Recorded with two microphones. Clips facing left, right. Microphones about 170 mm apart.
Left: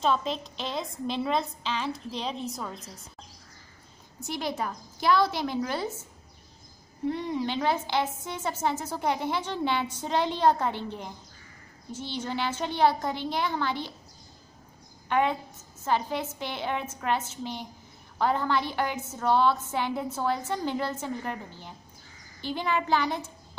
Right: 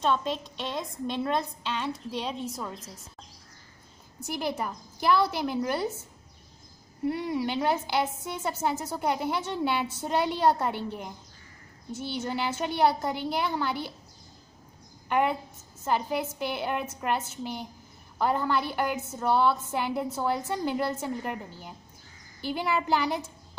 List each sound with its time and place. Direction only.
0.0 s a woman's voice: centre (ahead or behind)
4.6 s a woman's voice: 5° right (ahead or behind)
7.1 s a woman's voice: 10° right (ahead or behind)
12.3 s a woman's voice: 10° right (ahead or behind)
15.0 s a woman's voice: 5° right (ahead or behind)